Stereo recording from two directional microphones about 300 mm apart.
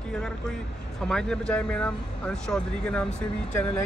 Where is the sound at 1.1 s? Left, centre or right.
Centre.